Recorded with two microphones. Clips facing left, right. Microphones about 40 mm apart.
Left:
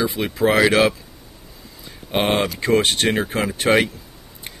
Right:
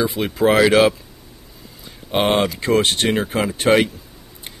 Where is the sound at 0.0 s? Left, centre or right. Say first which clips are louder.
Right 2 dB; centre.